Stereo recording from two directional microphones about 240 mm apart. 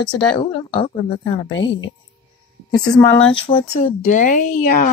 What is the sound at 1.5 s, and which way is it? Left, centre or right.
Speech, left.